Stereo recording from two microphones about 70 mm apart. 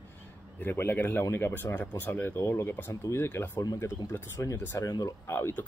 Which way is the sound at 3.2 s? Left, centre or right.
Left.